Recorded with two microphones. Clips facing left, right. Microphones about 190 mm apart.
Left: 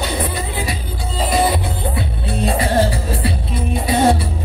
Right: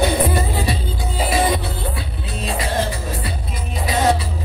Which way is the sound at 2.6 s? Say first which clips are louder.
Left 5 dB; 30° left (ahead or behind).